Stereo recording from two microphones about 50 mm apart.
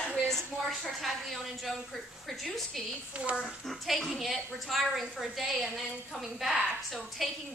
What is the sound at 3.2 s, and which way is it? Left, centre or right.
Speech, right.